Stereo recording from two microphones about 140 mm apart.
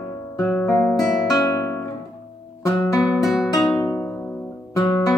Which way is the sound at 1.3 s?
20° left (ahead or behind).